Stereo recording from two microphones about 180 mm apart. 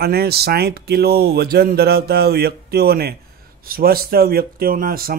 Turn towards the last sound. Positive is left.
turn(degrees=-55)  # may be behind; listen again after turning